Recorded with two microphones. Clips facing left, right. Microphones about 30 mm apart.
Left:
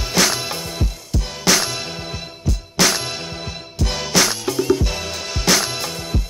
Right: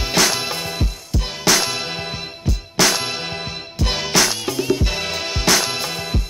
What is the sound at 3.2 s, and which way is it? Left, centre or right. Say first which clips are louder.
Music: right 3 dB; right.